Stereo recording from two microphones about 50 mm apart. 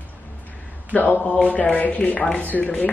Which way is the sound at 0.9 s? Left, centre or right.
Left.